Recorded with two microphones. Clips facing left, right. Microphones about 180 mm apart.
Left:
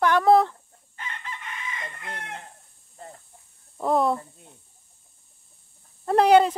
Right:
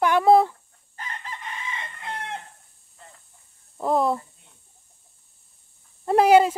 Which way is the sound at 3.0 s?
40° left (ahead or behind).